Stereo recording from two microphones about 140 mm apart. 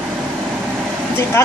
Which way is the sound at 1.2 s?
15° left (ahead or behind).